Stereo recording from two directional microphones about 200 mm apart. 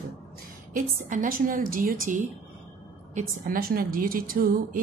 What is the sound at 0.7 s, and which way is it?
Speech, 40° right (ahead or behind).